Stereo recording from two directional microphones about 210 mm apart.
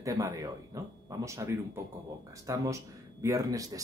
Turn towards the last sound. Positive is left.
turn(degrees=-15)  # may be behind; listen again after turning